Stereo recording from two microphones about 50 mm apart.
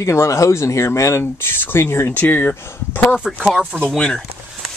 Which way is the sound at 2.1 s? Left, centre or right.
Left.